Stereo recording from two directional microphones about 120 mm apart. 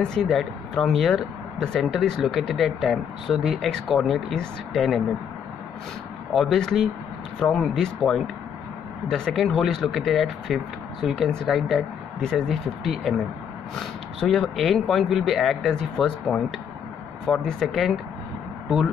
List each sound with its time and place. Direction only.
0.0 s speech: 5° left (ahead or behind)
6.3 s speech: centre (ahead or behind)